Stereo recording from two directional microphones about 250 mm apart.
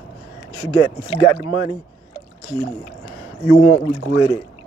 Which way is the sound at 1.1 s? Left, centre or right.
Left.